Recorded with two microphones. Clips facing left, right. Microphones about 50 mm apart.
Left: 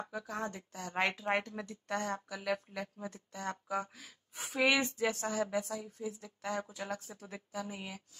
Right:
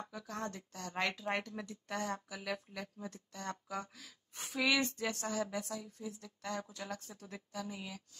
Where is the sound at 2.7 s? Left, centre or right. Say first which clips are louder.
Left 3 dB; centre.